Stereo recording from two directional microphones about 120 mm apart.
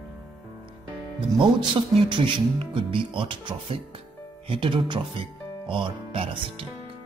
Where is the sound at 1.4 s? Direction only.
45° right (ahead or behind).